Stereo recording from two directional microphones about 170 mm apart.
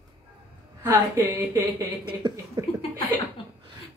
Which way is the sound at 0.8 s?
15° right (ahead or behind).